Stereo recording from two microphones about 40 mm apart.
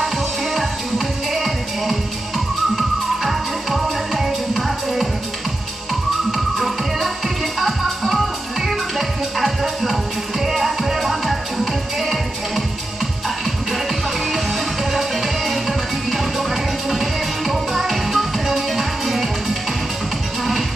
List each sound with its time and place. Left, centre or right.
0.6 s music: centre
6.3 s music: centre
14.3 s music: centre